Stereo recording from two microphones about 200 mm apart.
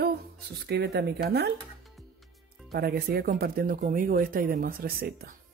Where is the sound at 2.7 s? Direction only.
50° right (ahead or behind).